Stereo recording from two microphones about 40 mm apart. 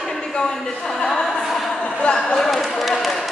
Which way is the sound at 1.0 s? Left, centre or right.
Centre.